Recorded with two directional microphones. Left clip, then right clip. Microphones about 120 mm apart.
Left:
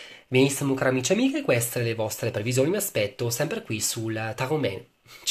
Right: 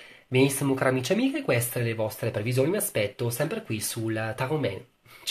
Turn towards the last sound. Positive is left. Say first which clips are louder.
# left 2 dB
turn(degrees=15)  # may be behind; listen again after turning